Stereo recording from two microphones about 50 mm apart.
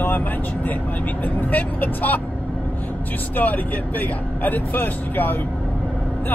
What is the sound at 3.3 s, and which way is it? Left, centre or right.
Speech, left.